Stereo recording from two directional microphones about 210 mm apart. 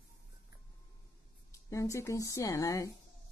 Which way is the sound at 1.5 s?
15° left (ahead or behind).